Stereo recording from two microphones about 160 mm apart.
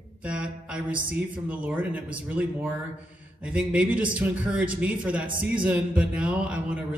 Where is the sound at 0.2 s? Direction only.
5° right (ahead or behind).